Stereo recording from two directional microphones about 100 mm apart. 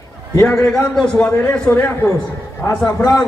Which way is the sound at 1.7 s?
25° left (ahead or behind).